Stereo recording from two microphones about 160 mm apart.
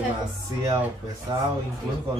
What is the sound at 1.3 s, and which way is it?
Speech, 25° right (ahead or behind).